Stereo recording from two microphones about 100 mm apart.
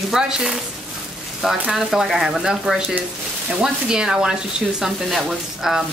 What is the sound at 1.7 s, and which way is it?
Speech, 5° right (ahead or behind).